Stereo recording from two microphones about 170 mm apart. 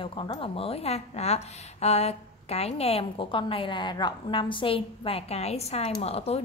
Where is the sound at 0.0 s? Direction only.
30° left (ahead or behind).